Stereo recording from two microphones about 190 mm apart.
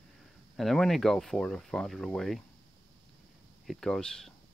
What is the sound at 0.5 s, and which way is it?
Speech, centre (ahead or behind).